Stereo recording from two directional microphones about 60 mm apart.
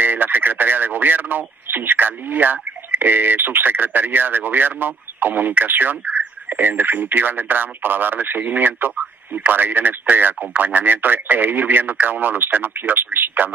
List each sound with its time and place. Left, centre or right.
0.0 s speech: right